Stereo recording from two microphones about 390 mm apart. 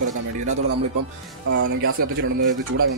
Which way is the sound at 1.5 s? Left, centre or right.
Right.